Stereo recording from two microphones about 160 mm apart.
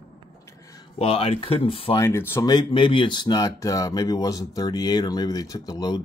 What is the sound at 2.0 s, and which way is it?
Speech, 15° left (ahead or behind).